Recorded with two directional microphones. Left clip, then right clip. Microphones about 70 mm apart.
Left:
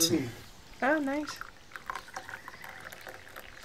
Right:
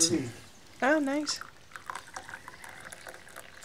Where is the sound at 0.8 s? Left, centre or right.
Right.